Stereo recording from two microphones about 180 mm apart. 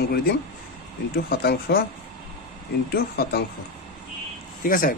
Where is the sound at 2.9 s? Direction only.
60° left (ahead or behind).